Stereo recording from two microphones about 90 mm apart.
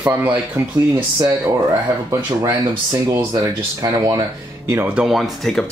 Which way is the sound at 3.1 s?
30° right (ahead or behind).